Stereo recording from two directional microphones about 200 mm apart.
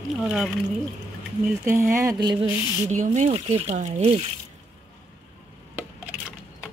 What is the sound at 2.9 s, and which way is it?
Speech, 35° right (ahead or behind).